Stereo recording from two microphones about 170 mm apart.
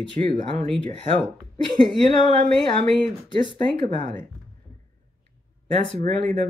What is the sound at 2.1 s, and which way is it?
Speech, 30° left (ahead or behind).